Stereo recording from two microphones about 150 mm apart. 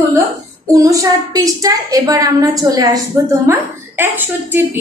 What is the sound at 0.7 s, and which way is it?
A woman's voice, 25° right (ahead or behind).